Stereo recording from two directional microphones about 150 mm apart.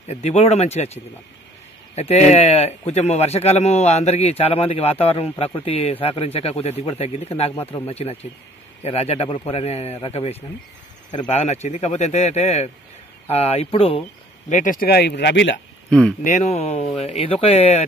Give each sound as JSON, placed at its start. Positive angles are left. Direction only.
{"t": 0.0, "sound": "speech", "side_deg": 45}
{"t": 14.5, "sound": "speech", "side_deg": 60}
{"t": 15.9, "sound": "speech", "side_deg": 5}
{"t": 16.3, "sound": "speech", "side_deg": 50}